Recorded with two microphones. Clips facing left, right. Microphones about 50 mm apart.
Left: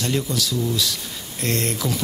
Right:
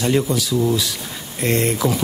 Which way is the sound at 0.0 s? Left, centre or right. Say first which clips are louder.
Right 5 dB; centre.